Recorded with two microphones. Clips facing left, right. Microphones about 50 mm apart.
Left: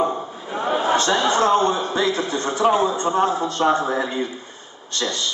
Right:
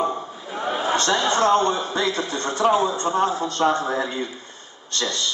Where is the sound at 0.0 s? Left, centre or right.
Centre.